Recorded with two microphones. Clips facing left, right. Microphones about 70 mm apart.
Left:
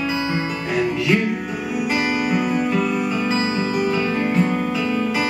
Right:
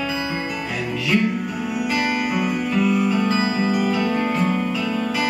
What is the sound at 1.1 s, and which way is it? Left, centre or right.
Music, left.